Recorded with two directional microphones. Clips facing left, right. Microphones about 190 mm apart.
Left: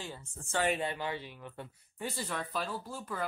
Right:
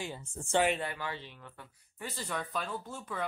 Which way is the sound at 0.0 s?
15° right (ahead or behind).